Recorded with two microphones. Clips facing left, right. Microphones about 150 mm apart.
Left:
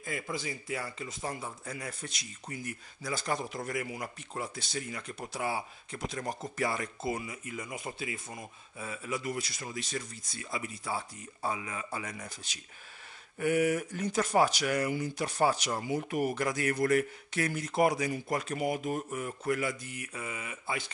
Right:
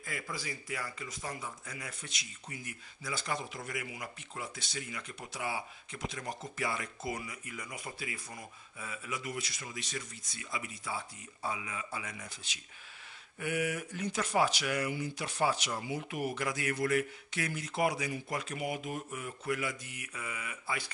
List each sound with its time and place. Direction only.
0.0 s a man's voice: 25° left (ahead or behind); by 6.9 s 40° left (ahead or behind)
7.0 s a man's voice: 25° left (ahead or behind)